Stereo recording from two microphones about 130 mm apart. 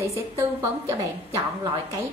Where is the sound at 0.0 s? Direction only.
20° right (ahead or behind).